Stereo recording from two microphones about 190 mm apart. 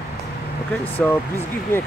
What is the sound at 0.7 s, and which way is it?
Speech, 10° left (ahead or behind).